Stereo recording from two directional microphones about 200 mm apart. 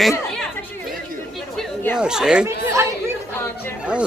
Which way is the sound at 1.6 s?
10° left (ahead or behind).